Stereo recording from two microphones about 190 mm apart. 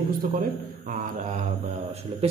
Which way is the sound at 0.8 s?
45° right (ahead or behind).